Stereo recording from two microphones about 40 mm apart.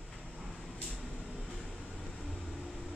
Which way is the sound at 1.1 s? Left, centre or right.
Centre.